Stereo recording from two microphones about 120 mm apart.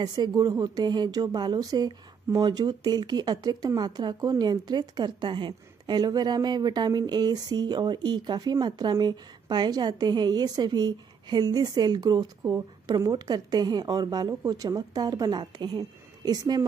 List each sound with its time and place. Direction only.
0.0 s speech: 35° right (ahead or behind)